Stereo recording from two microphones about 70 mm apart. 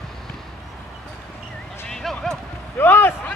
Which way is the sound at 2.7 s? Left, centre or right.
Left.